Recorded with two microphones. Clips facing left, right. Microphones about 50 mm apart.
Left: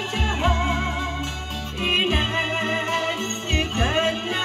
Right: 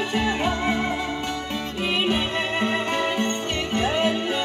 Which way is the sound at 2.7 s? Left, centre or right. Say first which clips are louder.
Even; right.